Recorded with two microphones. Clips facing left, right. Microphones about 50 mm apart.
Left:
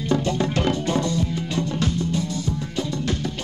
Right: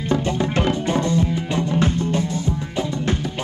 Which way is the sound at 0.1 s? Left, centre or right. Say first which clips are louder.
Right 1 dB; right.